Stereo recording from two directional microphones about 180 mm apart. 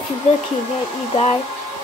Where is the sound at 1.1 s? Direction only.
35° left (ahead or behind).